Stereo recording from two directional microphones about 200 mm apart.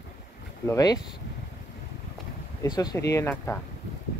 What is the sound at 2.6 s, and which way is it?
Speech, 20° left (ahead or behind).